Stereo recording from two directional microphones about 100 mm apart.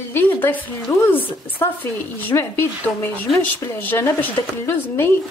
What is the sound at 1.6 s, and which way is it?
Speech, 20° left (ahead or behind).